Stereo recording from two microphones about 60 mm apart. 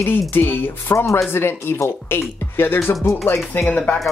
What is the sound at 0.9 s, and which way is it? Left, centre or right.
Speech, left.